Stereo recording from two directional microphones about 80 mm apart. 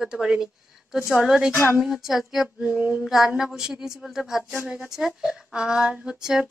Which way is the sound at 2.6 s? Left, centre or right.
Right.